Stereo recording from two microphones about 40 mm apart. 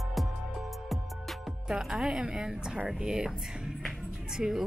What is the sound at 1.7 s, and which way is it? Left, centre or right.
A woman's voice, centre.